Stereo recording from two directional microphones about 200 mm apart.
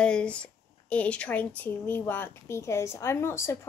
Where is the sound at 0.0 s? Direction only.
5° left (ahead or behind).